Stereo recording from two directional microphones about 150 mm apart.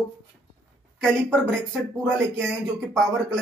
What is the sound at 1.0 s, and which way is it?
Speech, 5° left (ahead or behind).